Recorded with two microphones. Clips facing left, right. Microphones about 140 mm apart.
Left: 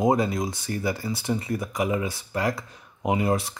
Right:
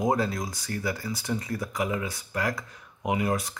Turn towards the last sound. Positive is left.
turn(degrees=25)  # may be behind; listen again after turning